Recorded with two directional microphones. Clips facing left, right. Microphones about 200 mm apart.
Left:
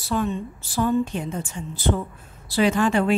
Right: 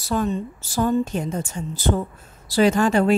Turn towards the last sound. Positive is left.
turn(degrees=-40)  # may be behind; listen again after turning